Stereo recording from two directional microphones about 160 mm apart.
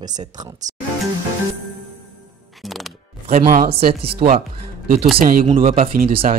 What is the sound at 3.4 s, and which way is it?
Speech, 50° right (ahead or behind).